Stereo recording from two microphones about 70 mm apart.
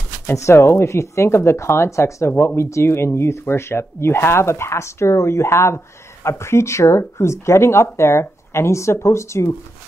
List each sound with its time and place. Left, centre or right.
0.4 s speech: left